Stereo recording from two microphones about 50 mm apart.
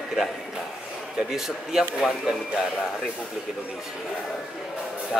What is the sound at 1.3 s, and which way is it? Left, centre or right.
Speech, centre.